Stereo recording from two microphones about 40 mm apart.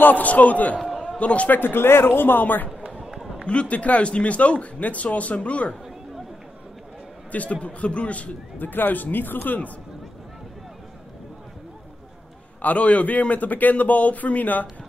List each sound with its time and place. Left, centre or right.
0.0 s speech: left
1.0 s a sound: left
1.5 s speech: left
3.4 s speech: left
7.6 s speech: left
8.5 s speech: left
12.6 s speech: left